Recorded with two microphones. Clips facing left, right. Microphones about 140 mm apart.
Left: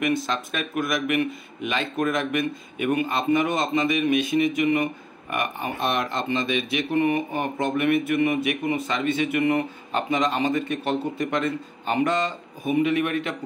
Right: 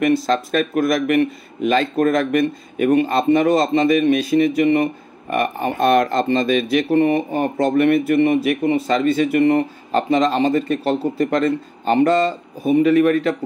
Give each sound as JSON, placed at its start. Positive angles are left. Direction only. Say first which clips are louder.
{"t": 0.0, "sound": "speech", "louder": "right 8 dB", "side_deg": -40}